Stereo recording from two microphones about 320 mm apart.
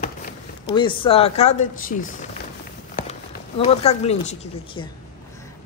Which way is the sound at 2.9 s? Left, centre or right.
Centre.